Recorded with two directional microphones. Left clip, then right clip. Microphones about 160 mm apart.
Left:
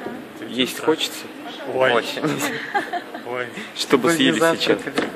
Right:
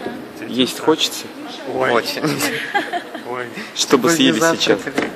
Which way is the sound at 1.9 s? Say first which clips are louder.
Right 2 dB; centre (ahead or behind).